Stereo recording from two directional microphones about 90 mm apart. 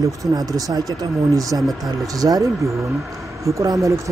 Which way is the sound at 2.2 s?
40° right (ahead or behind).